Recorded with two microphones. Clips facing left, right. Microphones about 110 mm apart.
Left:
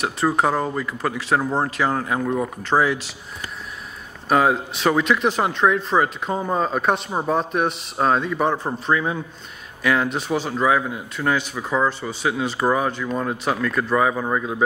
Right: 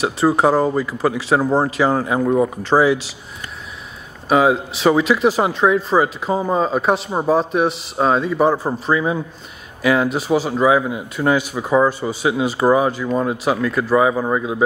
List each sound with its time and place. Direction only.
0.4 s speech: 5° right (ahead or behind)
2.2 s speech: 20° right (ahead or behind)
2.6 s speech: 5° right (ahead or behind)
4.3 s a man's voice: 5° right (ahead or behind)